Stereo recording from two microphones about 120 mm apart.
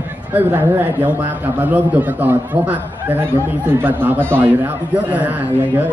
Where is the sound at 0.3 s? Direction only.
15° right (ahead or behind).